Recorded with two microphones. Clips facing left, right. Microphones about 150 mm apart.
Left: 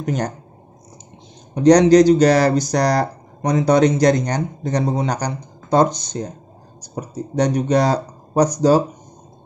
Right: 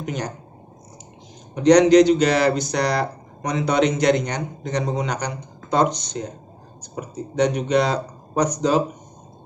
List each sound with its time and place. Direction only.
0.0 s speech: 45° left (ahead or behind)
1.5 s speech: 35° left (ahead or behind)